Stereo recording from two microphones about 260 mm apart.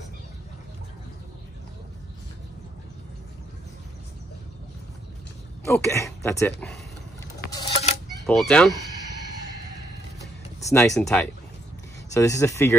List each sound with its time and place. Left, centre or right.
5.7 s speech: centre
7.6 s a sound: left
8.3 s speech: centre
10.7 s speech: centre